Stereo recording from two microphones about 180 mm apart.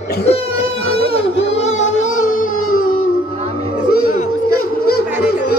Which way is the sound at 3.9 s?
55° left (ahead or behind).